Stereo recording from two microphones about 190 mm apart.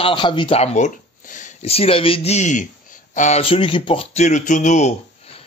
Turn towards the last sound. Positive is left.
turn(degrees=40)  # may be behind; listen again after turning